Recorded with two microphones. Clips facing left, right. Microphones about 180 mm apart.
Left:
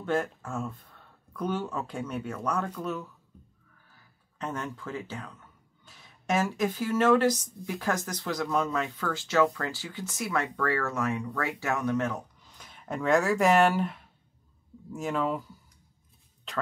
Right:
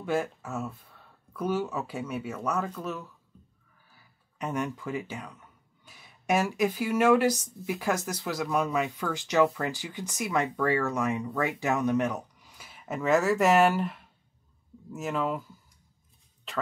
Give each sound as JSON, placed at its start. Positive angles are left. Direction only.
{"t": 0.0, "sound": "speech", "side_deg": -10}
{"t": 3.9, "sound": "speech", "side_deg": -15}
{"t": 16.5, "sound": "speech", "side_deg": 0}